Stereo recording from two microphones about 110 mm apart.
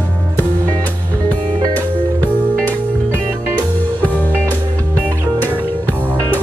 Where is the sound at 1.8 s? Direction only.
15° left (ahead or behind).